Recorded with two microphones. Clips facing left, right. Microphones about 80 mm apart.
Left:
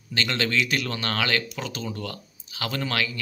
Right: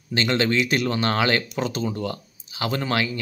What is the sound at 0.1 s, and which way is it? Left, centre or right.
Speech, right.